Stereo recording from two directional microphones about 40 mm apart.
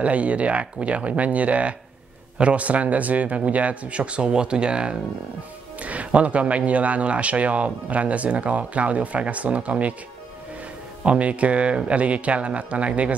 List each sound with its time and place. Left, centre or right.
0.0 s speech: right
5.9 s speech: right
11.1 s speech: right